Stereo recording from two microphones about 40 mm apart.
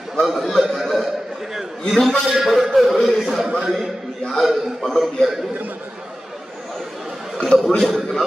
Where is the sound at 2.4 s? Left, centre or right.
Centre.